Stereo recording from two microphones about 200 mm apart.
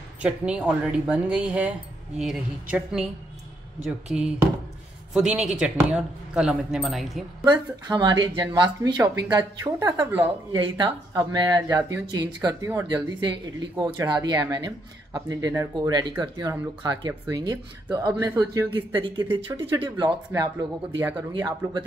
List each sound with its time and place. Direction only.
0.2 s speech: 5° right (ahead or behind)
5.3 s speech: 5° right (ahead or behind)
7.4 s speech: 20° right (ahead or behind)
21.3 s speech: 20° right (ahead or behind)